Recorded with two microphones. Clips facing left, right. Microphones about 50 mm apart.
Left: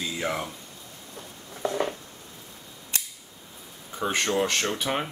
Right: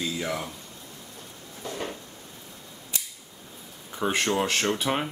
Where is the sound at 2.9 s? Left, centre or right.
Left.